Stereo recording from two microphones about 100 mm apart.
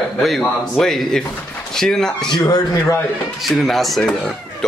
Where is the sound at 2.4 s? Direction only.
40° left (ahead or behind).